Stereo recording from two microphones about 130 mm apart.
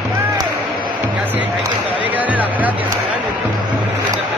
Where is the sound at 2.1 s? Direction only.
10° right (ahead or behind).